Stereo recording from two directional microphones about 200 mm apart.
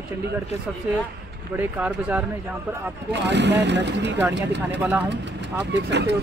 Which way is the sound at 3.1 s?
60° right (ahead or behind).